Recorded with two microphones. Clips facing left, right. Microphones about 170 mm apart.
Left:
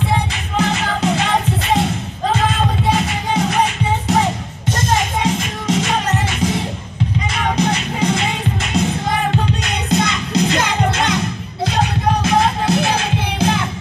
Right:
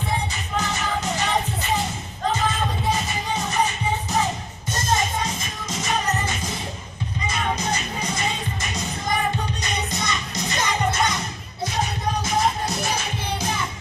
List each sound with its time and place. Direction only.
0.3 s music: 80° left
2.9 s music: 80° left
7.2 s music: 70° left (ahead or behind)
9.8 s music: 65° left (ahead or behind); by 13.7 s 90° left